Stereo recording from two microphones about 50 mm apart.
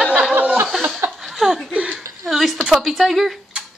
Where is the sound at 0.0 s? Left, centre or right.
Right.